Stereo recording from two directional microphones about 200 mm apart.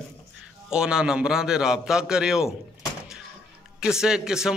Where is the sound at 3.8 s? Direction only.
5° right (ahead or behind).